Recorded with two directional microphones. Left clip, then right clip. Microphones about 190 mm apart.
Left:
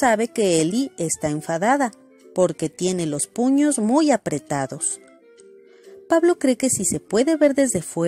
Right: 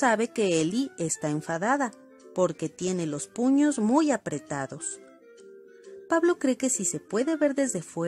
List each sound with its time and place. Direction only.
0.0 s speech: 10° left (ahead or behind)
6.0 s speech: 15° left (ahead or behind)